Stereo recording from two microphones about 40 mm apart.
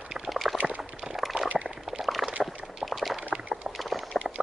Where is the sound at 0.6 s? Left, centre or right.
Right.